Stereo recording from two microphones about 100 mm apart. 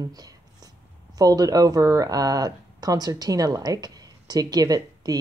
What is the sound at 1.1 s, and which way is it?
Speech, 40° right (ahead or behind).